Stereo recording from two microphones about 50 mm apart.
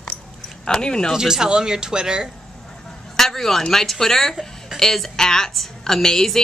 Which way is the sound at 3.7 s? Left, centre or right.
Centre.